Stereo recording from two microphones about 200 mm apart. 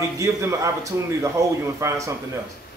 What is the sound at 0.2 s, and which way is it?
A man's voice, 15° right (ahead or behind).